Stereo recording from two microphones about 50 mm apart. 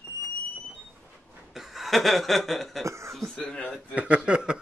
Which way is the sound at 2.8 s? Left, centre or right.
Right.